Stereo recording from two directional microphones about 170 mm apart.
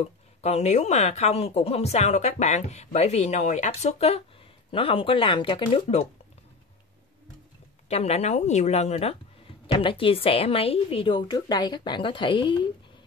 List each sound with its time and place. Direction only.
0.0 s speech: 40° left (ahead or behind)
7.9 s a woman's voice: 40° left (ahead or behind)